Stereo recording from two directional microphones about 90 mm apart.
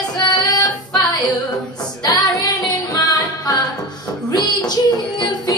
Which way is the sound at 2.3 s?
40° left (ahead or behind).